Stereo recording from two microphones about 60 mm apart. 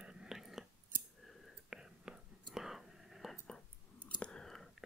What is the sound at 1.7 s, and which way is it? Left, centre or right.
Whispering, centre.